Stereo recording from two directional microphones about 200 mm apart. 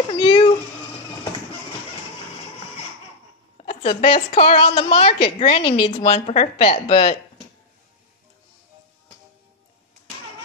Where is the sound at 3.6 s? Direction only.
30° left (ahead or behind).